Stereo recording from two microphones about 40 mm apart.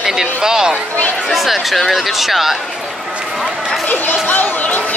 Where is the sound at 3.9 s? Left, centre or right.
Left.